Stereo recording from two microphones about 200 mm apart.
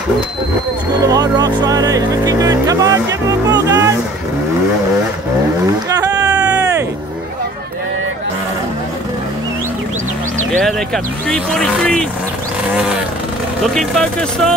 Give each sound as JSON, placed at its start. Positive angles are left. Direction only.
{"t": 1.0, "sound": "speech", "side_deg": -20}
{"t": 5.9, "sound": "a sound", "side_deg": -20}
{"t": 11.2, "sound": "speech", "side_deg": 5}
{"t": 13.6, "sound": "speech", "side_deg": 5}